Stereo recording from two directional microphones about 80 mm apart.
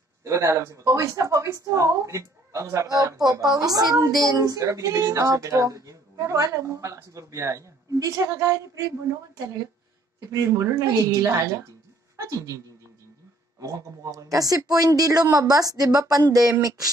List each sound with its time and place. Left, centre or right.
0.2 s speech: right
10.6 s speech: right